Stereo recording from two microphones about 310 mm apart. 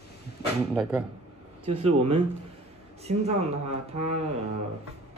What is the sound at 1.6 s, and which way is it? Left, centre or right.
Speech, centre.